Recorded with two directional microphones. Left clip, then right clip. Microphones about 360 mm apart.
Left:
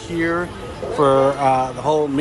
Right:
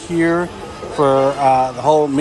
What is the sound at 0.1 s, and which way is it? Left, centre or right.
Speech, centre.